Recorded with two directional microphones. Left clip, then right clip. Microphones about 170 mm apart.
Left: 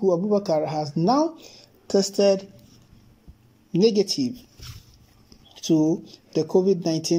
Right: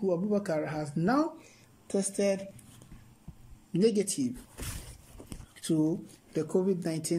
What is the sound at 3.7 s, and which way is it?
Speech, 5° left (ahead or behind).